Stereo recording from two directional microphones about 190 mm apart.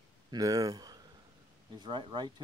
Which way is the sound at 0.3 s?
20° right (ahead or behind).